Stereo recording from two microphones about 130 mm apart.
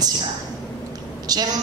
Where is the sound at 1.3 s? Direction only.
30° right (ahead or behind).